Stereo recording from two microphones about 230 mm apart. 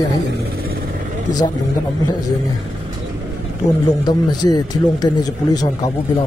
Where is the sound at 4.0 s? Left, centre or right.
Centre.